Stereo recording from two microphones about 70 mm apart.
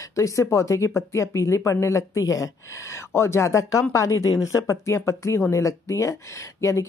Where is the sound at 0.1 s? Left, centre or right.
Left.